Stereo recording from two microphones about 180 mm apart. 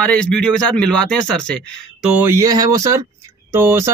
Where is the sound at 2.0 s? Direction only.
10° right (ahead or behind).